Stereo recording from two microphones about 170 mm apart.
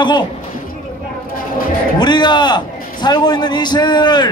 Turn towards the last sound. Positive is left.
turn(degrees=25)  # may be behind; listen again after turning